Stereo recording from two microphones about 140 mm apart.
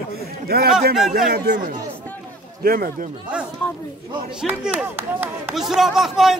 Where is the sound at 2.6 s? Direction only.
90° right.